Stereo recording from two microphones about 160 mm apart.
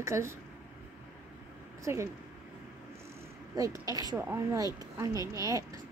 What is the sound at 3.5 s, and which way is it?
A woman's voice, 20° right (ahead or behind).